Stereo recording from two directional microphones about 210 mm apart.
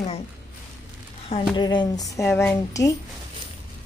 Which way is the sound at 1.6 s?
20° left (ahead or behind).